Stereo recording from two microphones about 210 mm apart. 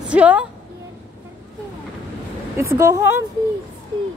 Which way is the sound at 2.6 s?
15° right (ahead or behind).